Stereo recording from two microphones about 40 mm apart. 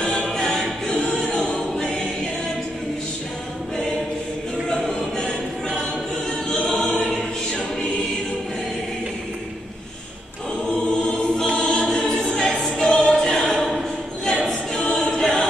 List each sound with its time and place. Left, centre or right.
0.0 s choir: left
0.4 s choir: centre
6.6 s choir: left
10.7 s choir: centre
12.6 s music: centre
14.7 s choir: centre